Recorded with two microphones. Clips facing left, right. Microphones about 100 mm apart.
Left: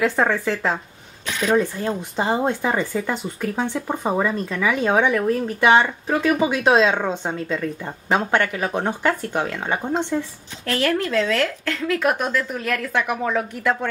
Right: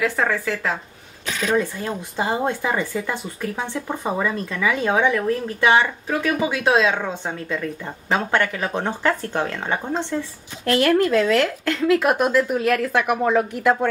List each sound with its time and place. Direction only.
0.0 s speech: 20° left (ahead or behind)
10.7 s speech: 5° right (ahead or behind)